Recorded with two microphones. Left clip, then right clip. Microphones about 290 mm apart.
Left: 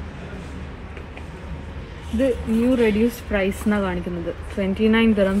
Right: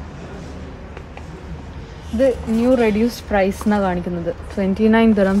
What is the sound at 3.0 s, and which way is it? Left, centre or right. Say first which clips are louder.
A woman's voice: right 4 dB; right.